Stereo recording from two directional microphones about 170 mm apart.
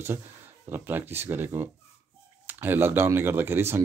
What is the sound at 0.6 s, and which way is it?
Speech, 10° right (ahead or behind).